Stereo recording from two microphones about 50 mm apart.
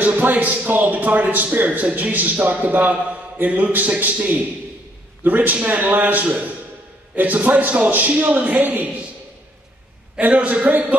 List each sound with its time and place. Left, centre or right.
0.0 s a man's voice: right
10.2 s a man's voice: right